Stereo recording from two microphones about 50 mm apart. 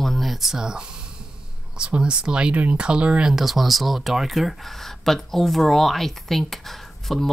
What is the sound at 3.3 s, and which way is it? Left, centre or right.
Speech, centre.